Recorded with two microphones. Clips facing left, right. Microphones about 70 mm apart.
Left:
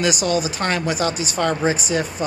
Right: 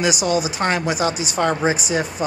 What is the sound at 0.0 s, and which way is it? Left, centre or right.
Speech, centre.